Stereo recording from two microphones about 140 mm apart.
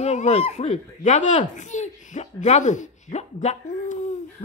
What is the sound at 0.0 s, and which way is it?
Speech, 50° left (ahead or behind).